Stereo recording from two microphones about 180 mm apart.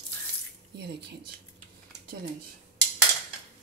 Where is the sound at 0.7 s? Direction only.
65° right (ahead or behind).